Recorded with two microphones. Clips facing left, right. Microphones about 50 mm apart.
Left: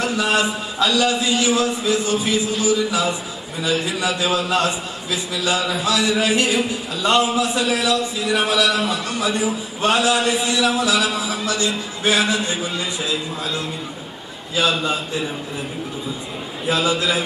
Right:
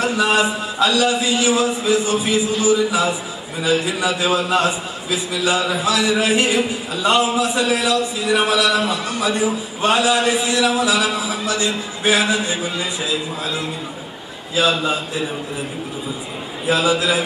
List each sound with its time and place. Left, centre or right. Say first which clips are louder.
0.0 s a man's voice: right 2 dB; centre
14.5 s a man's voice: right 2 dB; centre
16.6 s a man's voice: right 2 dB; centre